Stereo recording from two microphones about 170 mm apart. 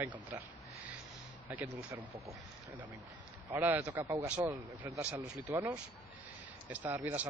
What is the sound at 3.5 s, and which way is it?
Speech, 10° right (ahead or behind).